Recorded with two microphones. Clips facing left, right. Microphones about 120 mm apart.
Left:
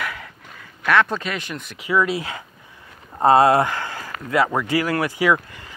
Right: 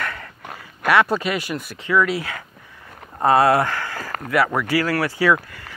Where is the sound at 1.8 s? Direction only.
15° left (ahead or behind).